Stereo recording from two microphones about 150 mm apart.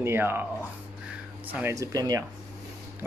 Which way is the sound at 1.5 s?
20° right (ahead or behind).